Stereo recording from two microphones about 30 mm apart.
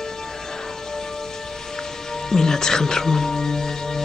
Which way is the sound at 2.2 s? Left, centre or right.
Centre.